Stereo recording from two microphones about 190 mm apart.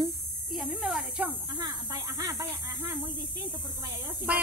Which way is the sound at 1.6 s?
20° right (ahead or behind).